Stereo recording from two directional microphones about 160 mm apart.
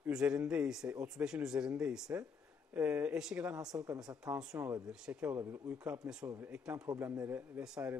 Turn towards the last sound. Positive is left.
turn(degrees=-5)  # may be behind; listen again after turning